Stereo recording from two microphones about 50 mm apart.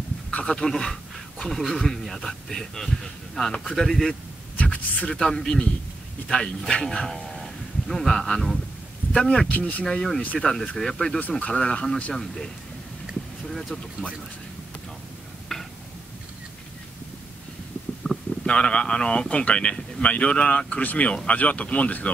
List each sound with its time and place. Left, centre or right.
0.3 s a man's voice: centre
4.6 s a woman's voice: left
7.1 s a man's voice: centre
9.5 s speech: left
9.8 s a man's voice: centre
11.1 s a man's voice: left; by 12.4 s centre
13.5 s a sound: centre
18.1 s stomach rumble: centre
18.4 s speech: left